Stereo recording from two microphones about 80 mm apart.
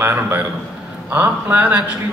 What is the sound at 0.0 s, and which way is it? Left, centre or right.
A man's voice, right.